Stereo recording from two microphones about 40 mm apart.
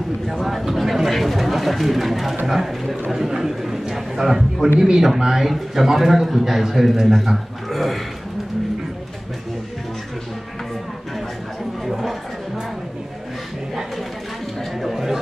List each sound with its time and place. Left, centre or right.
0.3 s a man's voice: centre
11.8 s chatter: centre
14.8 s a sound: centre